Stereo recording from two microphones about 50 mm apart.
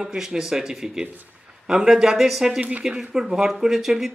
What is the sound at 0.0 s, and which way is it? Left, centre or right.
Speech, centre.